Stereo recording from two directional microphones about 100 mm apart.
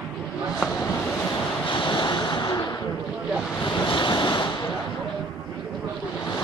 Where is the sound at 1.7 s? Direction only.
55° left (ahead or behind).